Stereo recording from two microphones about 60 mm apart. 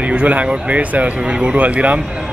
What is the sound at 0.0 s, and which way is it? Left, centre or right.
Speech, right.